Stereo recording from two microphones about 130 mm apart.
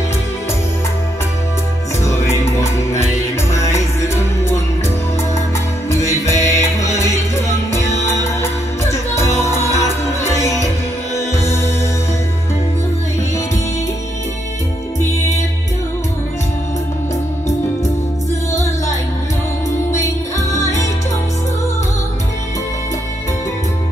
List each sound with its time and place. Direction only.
2.6 s music: 20° left (ahead or behind)
5.9 s music: 20° left (ahead or behind)
9.1 s music: 20° left (ahead or behind)
18.5 s music: 25° left (ahead or behind)
20.0 s music: 25° left (ahead or behind)